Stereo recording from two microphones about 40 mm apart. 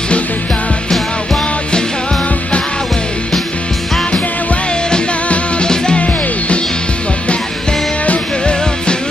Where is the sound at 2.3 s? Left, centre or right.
Left.